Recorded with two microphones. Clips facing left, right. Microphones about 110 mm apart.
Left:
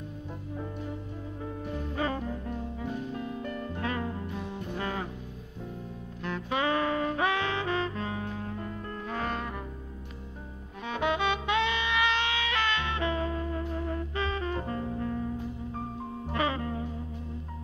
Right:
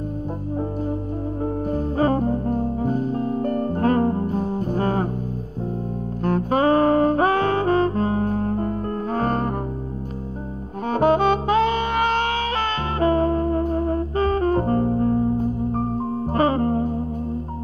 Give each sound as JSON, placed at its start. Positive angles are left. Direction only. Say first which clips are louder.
{"t": 1.4, "sound": "music", "louder": "right 11 dB", "side_deg": -40}
{"t": 6.2, "sound": "music", "louder": "right 11 dB", "side_deg": -45}
{"t": 10.9, "sound": "saxophone", "louder": "right 11 dB", "side_deg": -45}